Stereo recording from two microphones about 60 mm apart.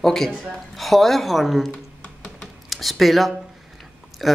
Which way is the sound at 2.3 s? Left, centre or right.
Centre.